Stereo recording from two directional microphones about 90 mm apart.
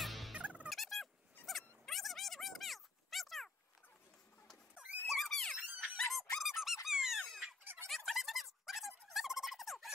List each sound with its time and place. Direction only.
0.0 s turkey: centre (ahead or behind)
0.4 s turkey: 15° right (ahead or behind)
0.7 s turkey: centre (ahead or behind)
1.4 s dog: centre (ahead or behind)
4.7 s squeak: 15° right (ahead or behind)
5.0 s squeak: centre (ahead or behind)
7.7 s turkey: centre (ahead or behind)